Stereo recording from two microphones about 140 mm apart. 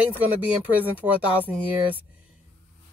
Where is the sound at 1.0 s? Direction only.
15° right (ahead or behind).